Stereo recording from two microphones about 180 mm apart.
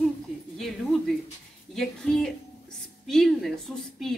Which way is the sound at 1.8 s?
Centre (ahead or behind).